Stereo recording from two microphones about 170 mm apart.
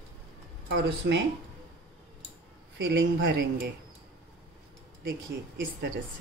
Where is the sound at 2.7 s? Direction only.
85° right.